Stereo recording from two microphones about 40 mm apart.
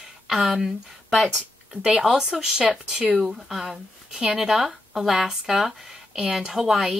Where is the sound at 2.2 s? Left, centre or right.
Centre.